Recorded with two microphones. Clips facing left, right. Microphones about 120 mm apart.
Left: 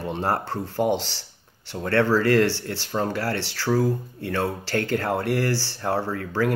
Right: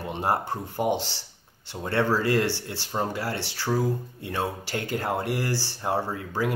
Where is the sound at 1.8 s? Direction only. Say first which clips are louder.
Left 4 dB; 20° right (ahead or behind).